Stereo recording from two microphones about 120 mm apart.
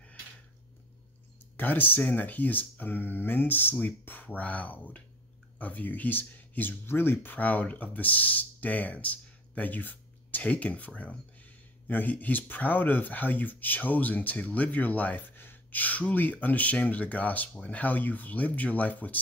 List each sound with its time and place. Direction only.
1.6 s speech: 15° left (ahead or behind)